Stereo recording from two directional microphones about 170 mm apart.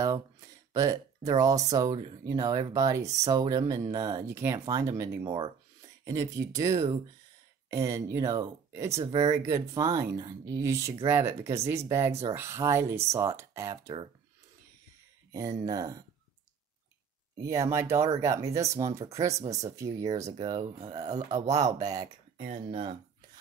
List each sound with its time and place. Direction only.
0.7 s speech: 20° right (ahead or behind)
9.0 s speech: 35° right (ahead or behind)
9.3 s speech: 15° right (ahead or behind)
15.3 s speech: 20° right (ahead or behind)
17.4 s speech: 20° right (ahead or behind)
22.4 s speech: 40° right (ahead or behind)